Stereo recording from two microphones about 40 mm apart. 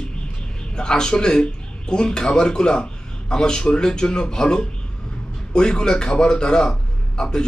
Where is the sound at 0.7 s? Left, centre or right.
Centre.